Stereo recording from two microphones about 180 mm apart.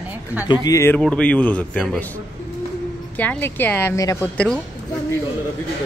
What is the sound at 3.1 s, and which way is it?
A man's voice, 10° left (ahead or behind).